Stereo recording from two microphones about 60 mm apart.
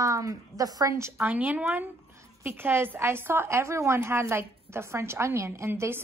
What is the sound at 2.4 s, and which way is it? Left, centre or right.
A woman's voice, right.